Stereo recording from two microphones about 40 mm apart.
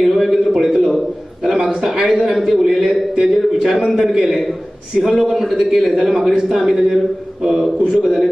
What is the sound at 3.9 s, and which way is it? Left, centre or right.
Speech, centre.